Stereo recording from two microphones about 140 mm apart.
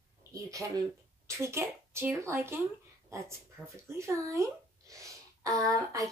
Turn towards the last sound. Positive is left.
turn(degrees=-25)  # may be behind; listen again after turning